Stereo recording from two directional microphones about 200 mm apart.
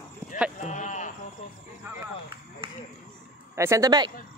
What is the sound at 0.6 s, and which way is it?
Sheep, 35° left (ahead or behind).